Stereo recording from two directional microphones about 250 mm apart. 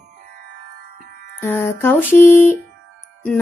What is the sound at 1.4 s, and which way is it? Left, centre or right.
A woman's voice, centre.